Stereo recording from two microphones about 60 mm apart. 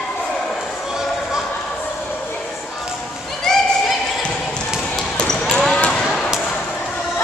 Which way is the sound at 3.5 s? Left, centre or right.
Centre.